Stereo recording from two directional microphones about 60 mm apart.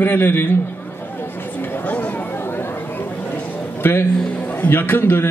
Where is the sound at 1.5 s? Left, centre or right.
Left.